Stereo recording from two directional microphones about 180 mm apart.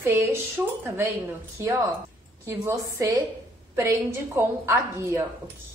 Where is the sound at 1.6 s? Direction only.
15° right (ahead or behind).